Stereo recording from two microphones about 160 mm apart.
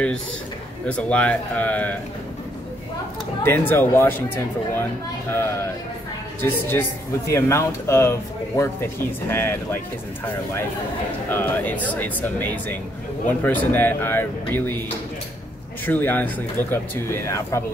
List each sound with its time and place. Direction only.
0.8 s speech: 10° left (ahead or behind)
3.4 s speech: 15° left (ahead or behind)
5.3 s speech: 15° left (ahead or behind)
6.7 s speech: 15° left (ahead or behind)
11.2 s speech: 10° left (ahead or behind)
15.8 s speech: 10° left (ahead or behind)